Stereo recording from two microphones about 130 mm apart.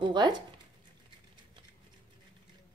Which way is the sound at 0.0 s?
35° right (ahead or behind).